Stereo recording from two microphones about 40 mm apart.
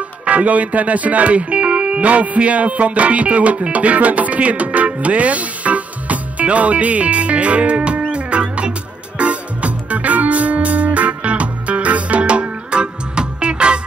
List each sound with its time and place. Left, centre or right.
0.2 s speech: right
8.1 s music: right